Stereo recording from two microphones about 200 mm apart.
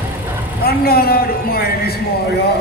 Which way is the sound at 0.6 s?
50° left (ahead or behind).